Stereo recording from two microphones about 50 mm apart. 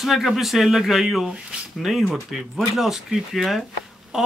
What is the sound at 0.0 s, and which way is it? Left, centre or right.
A man's voice, centre.